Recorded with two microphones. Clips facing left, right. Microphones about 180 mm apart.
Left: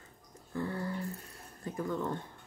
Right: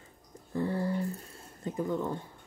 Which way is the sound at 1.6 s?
20° right (ahead or behind).